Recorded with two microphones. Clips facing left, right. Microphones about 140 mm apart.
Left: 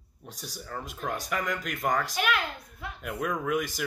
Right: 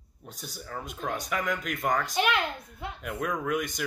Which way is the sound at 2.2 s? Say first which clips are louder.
Right 2 dB; 25° right (ahead or behind).